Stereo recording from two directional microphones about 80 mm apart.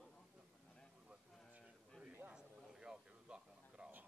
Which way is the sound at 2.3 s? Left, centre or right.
Centre.